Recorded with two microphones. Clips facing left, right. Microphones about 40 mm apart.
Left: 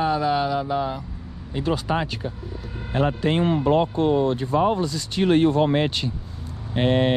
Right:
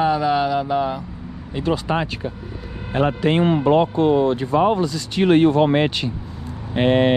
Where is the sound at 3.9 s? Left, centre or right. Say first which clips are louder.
Right 4 dB; right.